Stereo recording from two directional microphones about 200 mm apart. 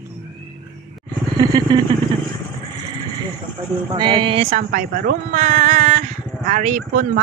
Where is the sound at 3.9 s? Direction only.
25° right (ahead or behind).